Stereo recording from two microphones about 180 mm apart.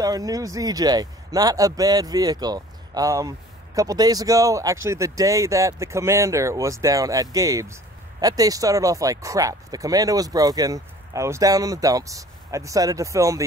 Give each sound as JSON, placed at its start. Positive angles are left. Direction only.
{"t": 0.0, "sound": "speech", "side_deg": -20}